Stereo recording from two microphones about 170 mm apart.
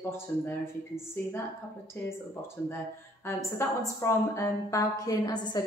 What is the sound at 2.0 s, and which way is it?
Speech, 10° left (ahead or behind).